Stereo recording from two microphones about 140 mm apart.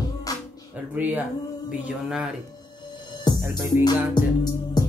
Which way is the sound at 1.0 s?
10° right (ahead or behind).